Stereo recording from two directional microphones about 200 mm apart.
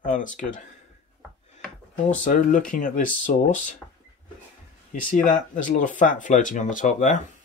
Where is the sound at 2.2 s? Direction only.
40° left (ahead or behind).